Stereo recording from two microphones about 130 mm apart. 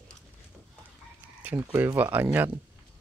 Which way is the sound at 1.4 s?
15° right (ahead or behind).